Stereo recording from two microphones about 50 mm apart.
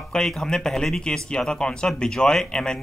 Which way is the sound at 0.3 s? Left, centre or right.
Centre.